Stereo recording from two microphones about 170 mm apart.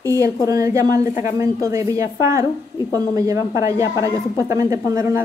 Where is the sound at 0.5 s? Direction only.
20° right (ahead or behind).